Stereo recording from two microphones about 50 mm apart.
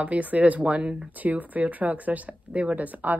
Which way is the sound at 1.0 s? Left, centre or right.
Right.